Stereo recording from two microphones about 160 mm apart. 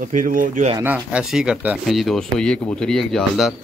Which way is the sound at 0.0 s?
60° right (ahead or behind).